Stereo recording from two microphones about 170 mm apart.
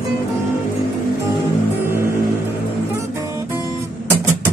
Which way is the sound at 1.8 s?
15° right (ahead or behind).